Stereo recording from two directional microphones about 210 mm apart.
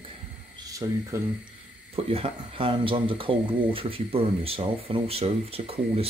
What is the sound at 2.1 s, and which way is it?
Speech, 25° right (ahead or behind).